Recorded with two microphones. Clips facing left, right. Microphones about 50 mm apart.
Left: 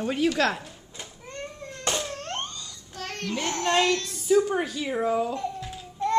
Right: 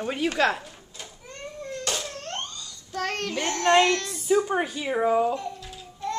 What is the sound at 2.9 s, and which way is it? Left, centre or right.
Child singing, right.